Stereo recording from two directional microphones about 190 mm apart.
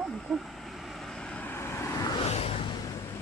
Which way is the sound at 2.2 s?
30° left (ahead or behind).